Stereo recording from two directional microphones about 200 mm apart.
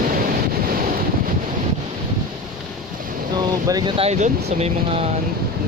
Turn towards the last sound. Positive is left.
turn(degrees=-30)  # may be behind; listen again after turning